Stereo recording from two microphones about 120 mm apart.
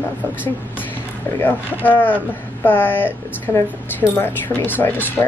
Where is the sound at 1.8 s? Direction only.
15° left (ahead or behind).